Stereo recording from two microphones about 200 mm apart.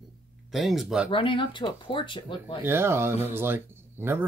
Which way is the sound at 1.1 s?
25° left (ahead or behind).